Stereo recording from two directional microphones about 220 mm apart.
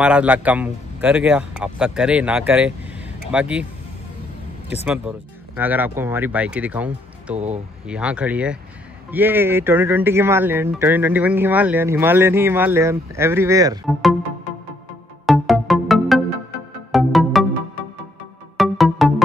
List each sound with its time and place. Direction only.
0.0 s speech: 5° right (ahead or behind)
4.8 s speech: 5° right (ahead or behind)
7.3 s speech: 30° right (ahead or behind)
7.8 s speech: 5° right (ahead or behind)
15.2 s music: centre (ahead or behind)
18.6 s music: centre (ahead or behind)